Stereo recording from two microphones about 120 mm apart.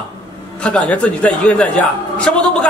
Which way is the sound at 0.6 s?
10° left (ahead or behind).